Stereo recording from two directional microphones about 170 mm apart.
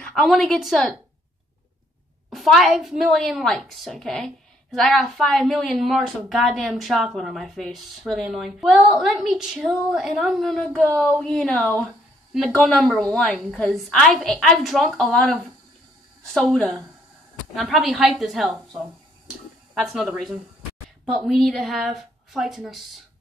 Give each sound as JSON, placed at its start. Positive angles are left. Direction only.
{"t": 0.0, "sound": "a woman's voice", "side_deg": 0}
{"t": 2.3, "sound": "a woman's voice", "side_deg": 0}
{"t": 16.3, "sound": "a woman's voice", "side_deg": 0}
{"t": 18.8, "sound": "a sound", "side_deg": 0}
{"t": 21.3, "sound": "a woman's voice", "side_deg": 0}